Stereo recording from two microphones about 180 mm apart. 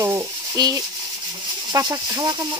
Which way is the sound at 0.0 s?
20° right (ahead or behind).